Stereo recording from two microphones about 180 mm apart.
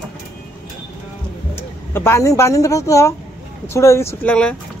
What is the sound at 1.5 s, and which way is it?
Speech, 15° left (ahead or behind).